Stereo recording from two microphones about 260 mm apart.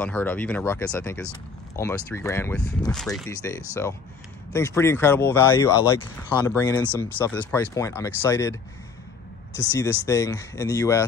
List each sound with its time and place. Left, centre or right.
0.0 s speech: centre
9.7 s speech: centre